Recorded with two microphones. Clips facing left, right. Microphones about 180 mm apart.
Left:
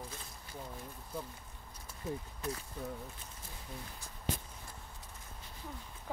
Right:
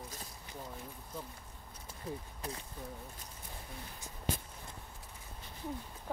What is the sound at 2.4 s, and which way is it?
Speech, 30° right (ahead or behind).